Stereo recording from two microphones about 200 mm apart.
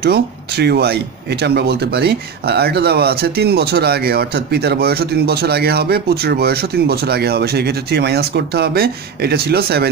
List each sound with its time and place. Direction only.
0.0 s speech: 55° right (ahead or behind)